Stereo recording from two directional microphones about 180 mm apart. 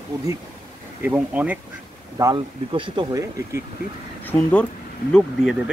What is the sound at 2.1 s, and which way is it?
Speech, 25° right (ahead or behind).